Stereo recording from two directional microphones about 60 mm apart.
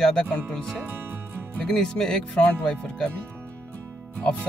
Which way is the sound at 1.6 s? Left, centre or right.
Centre.